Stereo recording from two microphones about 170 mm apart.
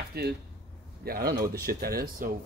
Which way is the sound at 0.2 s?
65° right (ahead or behind).